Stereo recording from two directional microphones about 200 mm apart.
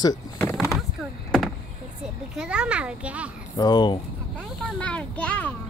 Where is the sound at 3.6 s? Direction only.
20° left (ahead or behind).